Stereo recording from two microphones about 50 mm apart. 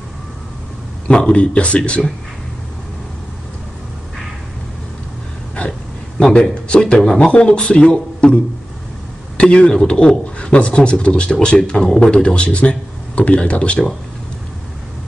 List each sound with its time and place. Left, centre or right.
1.0 s speech: centre
5.7 s a sound: centre
7.2 s speech: left
9.4 s speech: left